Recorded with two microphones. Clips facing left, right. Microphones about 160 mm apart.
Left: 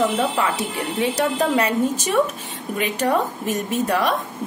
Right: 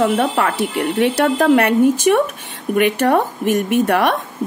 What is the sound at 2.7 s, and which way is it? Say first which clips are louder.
A woman's voice: right 6 dB; 60° right (ahead or behind).